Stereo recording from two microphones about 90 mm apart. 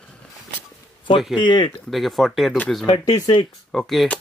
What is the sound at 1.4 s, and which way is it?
Speech, 60° left (ahead or behind).